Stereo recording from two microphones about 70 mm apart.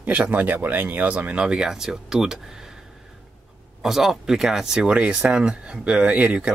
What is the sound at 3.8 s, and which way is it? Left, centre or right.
Speech, centre.